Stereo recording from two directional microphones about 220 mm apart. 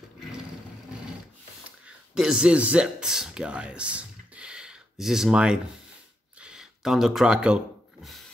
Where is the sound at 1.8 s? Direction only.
5° right (ahead or behind).